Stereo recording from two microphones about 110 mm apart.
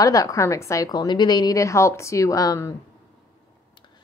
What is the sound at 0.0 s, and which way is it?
A woman's voice, 30° left (ahead or behind).